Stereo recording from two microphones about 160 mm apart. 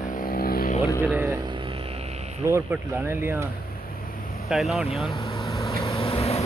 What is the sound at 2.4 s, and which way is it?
Speech, 15° right (ahead or behind).